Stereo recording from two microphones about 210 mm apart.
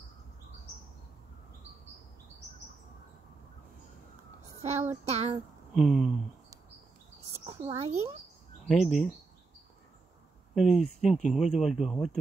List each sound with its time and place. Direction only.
4.6 s child singing: 30° right (ahead or behind)
5.8 s speech: centre (ahead or behind)
7.4 s a sound: 30° right (ahead or behind)
8.6 s speech: centre (ahead or behind)
10.5 s speech: centre (ahead or behind)